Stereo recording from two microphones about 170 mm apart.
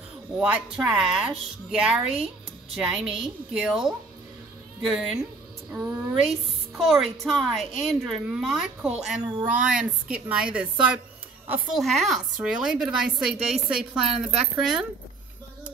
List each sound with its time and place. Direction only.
0.4 s a woman's voice: 5° right (ahead or behind)